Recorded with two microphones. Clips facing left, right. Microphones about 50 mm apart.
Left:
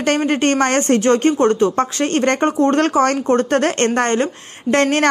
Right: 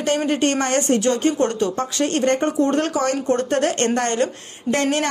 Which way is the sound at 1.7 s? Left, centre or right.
Left.